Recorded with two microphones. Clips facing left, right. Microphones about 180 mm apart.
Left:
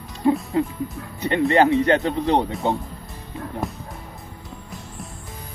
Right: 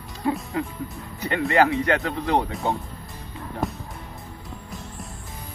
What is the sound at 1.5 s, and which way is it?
Speech, 25° left (ahead or behind).